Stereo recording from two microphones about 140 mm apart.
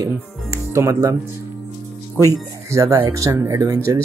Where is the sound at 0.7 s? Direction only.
20° right (ahead or behind).